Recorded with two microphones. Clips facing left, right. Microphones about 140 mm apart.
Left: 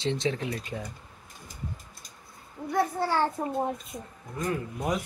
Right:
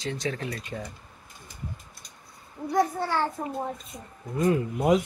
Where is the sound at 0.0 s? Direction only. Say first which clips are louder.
Left 3 dB; 25° left (ahead or behind).